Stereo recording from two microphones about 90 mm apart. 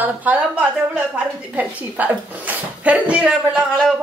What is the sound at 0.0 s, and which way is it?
Speech, 15° right (ahead or behind).